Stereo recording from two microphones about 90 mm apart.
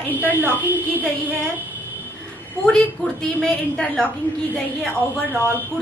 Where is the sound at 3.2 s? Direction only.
10° left (ahead or behind).